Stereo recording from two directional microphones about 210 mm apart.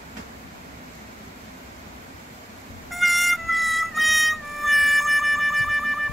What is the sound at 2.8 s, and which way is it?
Music, centre (ahead or behind).